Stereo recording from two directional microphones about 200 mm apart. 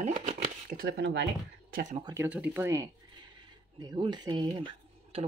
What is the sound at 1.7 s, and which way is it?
Speech, 40° right (ahead or behind).